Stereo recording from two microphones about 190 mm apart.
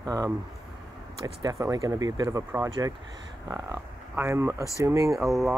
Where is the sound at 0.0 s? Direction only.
20° right (ahead or behind).